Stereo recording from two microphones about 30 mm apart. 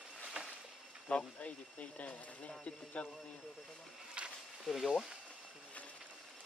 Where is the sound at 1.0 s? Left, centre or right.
Left.